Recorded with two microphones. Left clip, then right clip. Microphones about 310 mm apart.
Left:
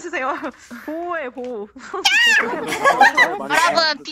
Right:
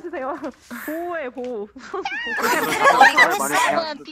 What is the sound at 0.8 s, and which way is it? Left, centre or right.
Speech, centre.